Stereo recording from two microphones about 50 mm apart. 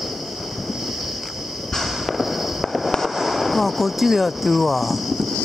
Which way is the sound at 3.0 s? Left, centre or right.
Centre.